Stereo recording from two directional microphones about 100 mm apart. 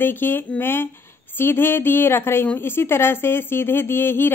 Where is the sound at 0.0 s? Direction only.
20° left (ahead or behind).